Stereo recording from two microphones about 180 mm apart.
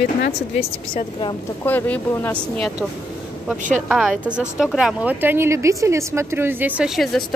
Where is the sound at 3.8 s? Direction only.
Centre (ahead or behind).